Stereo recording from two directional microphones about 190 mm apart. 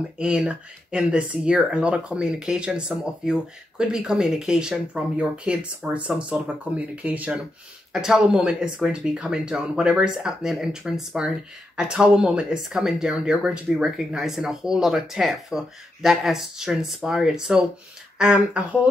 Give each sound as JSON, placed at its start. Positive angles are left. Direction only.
{"t": 0.2, "sound": "speech", "side_deg": -5}